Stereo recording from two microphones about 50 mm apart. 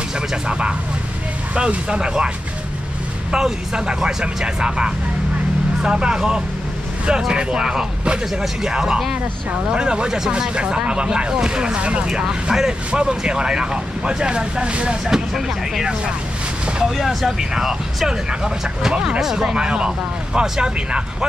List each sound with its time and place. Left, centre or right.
0.3 s speech: centre
15.0 s speech: centre